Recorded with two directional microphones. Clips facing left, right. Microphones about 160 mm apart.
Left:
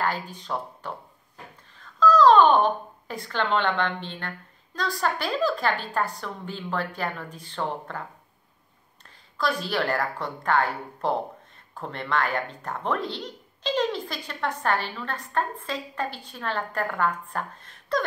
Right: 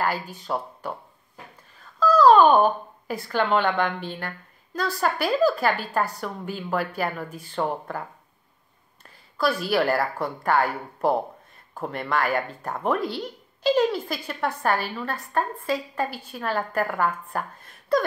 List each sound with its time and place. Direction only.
0.0 s a sound: 10° right (ahead or behind)
4.7 s speech: 10° right (ahead or behind)
9.0 s speech: 10° right (ahead or behind)